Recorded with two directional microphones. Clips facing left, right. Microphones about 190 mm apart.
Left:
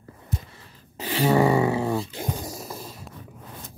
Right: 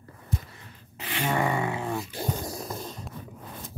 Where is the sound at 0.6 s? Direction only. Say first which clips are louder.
Left 5 dB; 35° left (ahead or behind).